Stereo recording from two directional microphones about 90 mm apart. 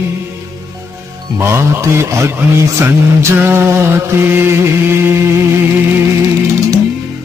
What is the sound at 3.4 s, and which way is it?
Mantra, 25° right (ahead or behind).